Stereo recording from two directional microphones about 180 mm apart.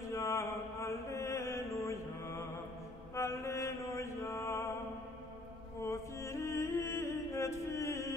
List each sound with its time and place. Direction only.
0.1 s mantra: 15° left (ahead or behind)
5.9 s music: 15° left (ahead or behind)